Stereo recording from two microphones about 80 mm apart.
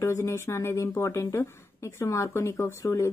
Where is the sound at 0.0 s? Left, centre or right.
Left.